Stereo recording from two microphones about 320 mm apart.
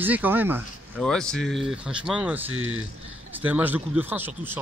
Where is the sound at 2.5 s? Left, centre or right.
Right.